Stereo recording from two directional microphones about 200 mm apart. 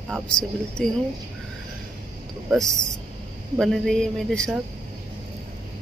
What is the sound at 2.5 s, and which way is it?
A woman's voice, centre (ahead or behind).